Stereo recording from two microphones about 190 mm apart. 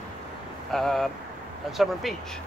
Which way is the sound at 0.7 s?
Centre (ahead or behind).